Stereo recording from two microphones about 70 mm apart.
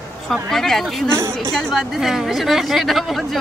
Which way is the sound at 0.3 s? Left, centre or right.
Centre.